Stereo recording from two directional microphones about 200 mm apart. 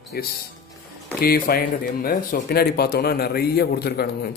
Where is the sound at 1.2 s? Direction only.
50° left (ahead or behind).